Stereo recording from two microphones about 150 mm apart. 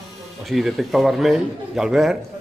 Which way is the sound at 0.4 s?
Centre (ahead or behind).